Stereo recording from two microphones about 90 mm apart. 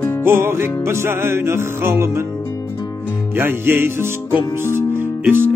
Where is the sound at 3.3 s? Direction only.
25° right (ahead or behind).